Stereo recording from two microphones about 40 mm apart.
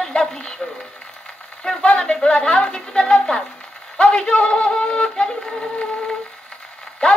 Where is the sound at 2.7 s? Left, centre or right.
Left.